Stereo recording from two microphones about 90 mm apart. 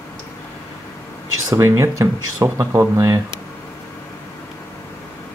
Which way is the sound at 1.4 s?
30° right (ahead or behind).